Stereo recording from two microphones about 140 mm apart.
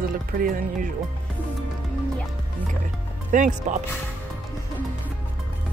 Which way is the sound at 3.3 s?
65° right (ahead or behind).